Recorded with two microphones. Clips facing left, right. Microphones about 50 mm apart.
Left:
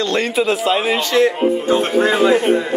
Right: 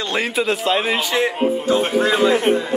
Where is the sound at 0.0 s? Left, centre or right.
Centre.